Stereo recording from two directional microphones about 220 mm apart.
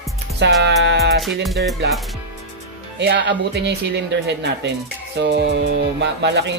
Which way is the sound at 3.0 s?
50° right (ahead or behind).